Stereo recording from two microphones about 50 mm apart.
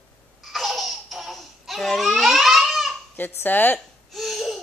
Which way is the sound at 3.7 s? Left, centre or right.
Centre.